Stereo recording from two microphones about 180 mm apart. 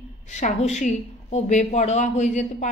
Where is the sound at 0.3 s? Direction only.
40° left (ahead or behind).